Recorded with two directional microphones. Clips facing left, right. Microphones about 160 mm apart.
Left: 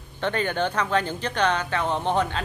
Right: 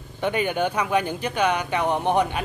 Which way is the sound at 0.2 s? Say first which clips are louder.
Right 2 dB; 10° right (ahead or behind).